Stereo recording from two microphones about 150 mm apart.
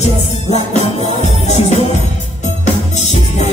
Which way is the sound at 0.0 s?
45° left (ahead or behind).